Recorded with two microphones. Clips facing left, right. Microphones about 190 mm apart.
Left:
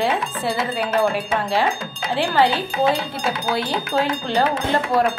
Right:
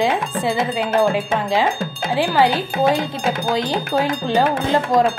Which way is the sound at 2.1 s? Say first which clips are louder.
Right 2 dB; 10° right (ahead or behind).